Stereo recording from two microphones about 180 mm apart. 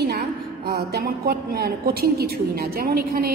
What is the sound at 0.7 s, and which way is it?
A woman's voice, 60° right (ahead or behind).